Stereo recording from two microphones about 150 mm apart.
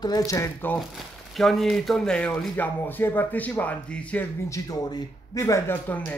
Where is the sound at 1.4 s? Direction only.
Centre (ahead or behind).